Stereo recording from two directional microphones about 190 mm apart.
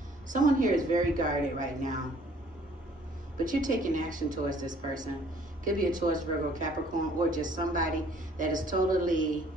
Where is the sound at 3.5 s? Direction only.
45° right (ahead or behind).